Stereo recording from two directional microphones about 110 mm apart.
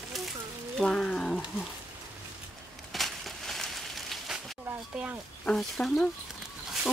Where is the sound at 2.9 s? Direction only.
Centre (ahead or behind).